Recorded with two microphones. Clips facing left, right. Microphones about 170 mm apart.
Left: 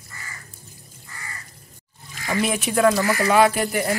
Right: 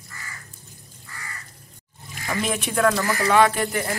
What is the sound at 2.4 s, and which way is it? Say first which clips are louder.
Speech: left 3 dB; 5° left (ahead or behind).